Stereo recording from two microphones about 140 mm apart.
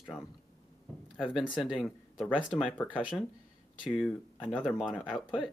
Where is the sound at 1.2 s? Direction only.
5° right (ahead or behind).